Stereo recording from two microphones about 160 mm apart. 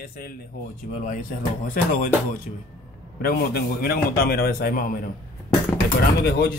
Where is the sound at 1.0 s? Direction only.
55° left (ahead or behind).